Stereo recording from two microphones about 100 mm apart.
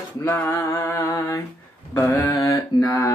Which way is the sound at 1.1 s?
35° left (ahead or behind).